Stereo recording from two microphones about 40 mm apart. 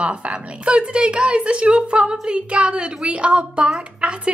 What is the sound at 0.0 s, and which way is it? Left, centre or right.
A woman's voice, right.